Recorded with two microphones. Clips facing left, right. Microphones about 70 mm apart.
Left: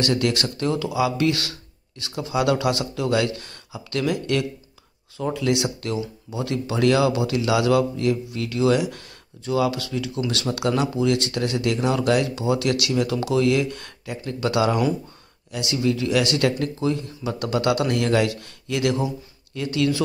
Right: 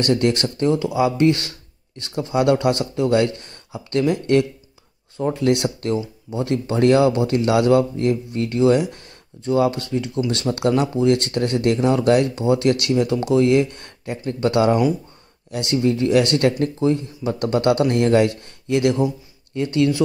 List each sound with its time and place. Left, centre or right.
0.0 s speech: right
5.3 s speech: right
10.5 s speech: centre
10.8 s speech: right